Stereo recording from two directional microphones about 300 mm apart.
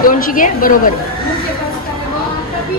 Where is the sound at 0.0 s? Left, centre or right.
Left.